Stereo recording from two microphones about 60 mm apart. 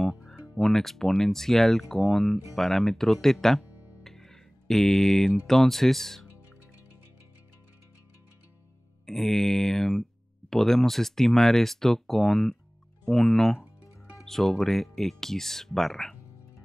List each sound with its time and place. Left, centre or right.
0.3 s speech: centre
3.6 s music: right
4.0 s speech: centre
9.0 s speech: centre